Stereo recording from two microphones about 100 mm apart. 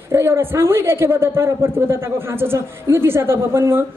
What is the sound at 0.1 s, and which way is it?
A woman's voice, 25° right (ahead or behind).